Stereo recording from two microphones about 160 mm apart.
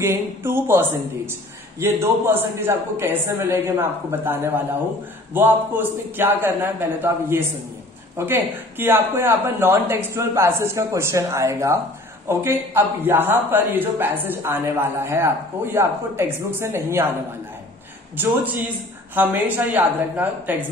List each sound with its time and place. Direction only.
0.0 s a man's voice: 15° right (ahead or behind)
18.1 s a man's voice: 10° right (ahead or behind)